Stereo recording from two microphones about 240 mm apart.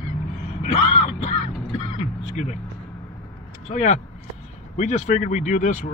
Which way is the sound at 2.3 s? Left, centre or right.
Left.